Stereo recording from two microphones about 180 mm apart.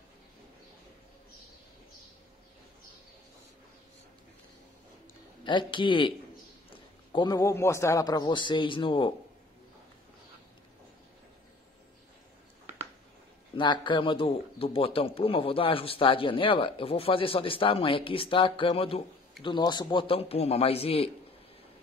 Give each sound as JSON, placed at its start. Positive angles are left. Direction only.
{"t": 5.4, "sound": "a man's voice", "side_deg": 25}
{"t": 13.6, "sound": "a man's voice", "side_deg": 25}